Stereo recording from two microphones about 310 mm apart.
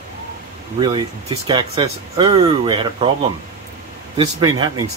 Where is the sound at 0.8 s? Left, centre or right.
Centre.